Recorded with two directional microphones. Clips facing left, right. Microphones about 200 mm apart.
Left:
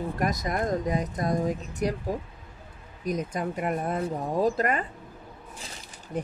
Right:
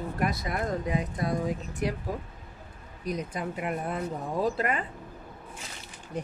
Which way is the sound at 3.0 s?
45° left (ahead or behind).